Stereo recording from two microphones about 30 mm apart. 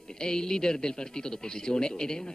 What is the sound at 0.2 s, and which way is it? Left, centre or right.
Speech, left.